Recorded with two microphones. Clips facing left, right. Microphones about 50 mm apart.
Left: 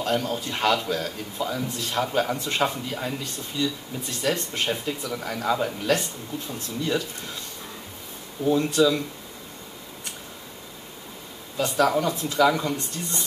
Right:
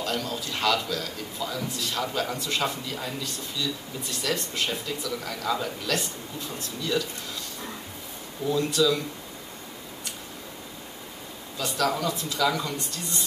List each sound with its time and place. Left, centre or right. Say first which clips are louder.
0.0 s a man's voice: left 4 dB; left
4.2 s a man's voice: left 3 dB; left
8.5 s speech: left 3 dB; left
11.5 s a man's voice: left 5 dB; left